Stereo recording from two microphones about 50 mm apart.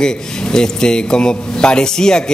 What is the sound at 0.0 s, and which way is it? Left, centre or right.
A man's voice, centre.